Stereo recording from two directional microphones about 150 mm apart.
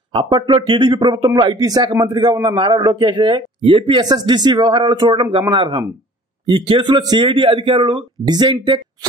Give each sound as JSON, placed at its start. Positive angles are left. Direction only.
{"t": 0.1, "sound": "a man's voice", "side_deg": -35}